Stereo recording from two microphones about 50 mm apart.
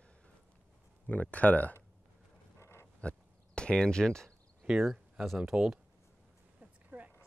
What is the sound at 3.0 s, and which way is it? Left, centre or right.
Speech, left.